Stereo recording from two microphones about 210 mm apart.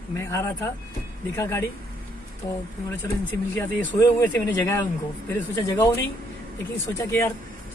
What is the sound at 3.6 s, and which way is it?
Speech, 10° left (ahead or behind).